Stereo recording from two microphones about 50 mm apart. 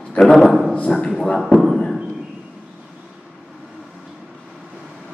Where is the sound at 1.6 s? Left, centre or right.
Centre.